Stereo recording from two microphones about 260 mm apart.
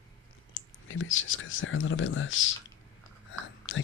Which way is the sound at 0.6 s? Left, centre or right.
Left.